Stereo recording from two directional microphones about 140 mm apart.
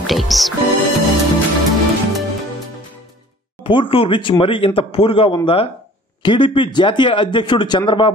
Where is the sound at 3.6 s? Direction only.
35° left (ahead or behind).